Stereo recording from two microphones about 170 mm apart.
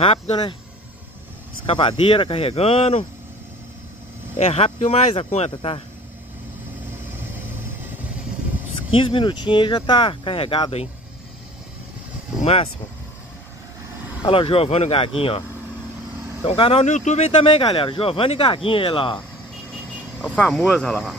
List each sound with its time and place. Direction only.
0.0 s speech: 30° left (ahead or behind)
1.7 s speech: 30° left (ahead or behind)
4.4 s speech: 40° left (ahead or behind)
7.2 s vehicle: 10° right (ahead or behind)
8.9 s speech: 30° left (ahead or behind)
12.4 s speech: 35° left (ahead or behind)
14.2 s speech: 30° left (ahead or behind)
16.4 s speech: 35° left (ahead or behind)
16.8 s speech: 45° left (ahead or behind)
20.2 s speech: 10° left (ahead or behind)